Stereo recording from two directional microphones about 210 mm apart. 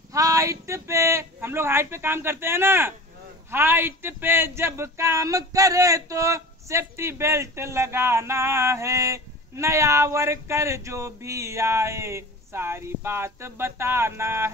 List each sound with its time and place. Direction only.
0.1 s speech: 15° right (ahead or behind)